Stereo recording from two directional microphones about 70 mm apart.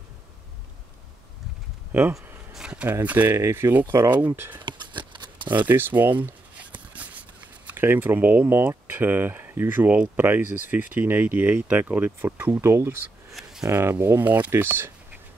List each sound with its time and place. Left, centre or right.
1.9 s speech: right
2.5 s speech: centre
3.3 s speech: right
4.6 s a sound: right
5.5 s a sound: right
7.7 s speech: right
13.3 s a sound: centre
13.7 s speech: right
14.2 s speech: right
14.5 s speech: right